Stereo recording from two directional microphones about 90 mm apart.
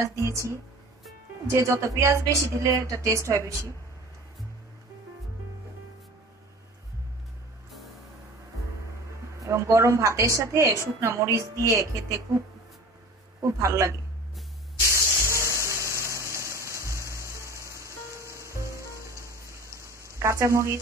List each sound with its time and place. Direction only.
0.0 s a woman's voice: 35° right (ahead or behind)
9.4 s a woman's voice: 35° right (ahead or behind)
13.4 s a woman's voice: 35° right (ahead or behind)
14.9 s music: 30° right (ahead or behind)
19.1 s a sound: 35° right (ahead or behind)